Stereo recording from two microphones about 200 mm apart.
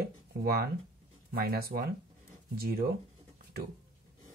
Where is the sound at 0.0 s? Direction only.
50° right (ahead or behind).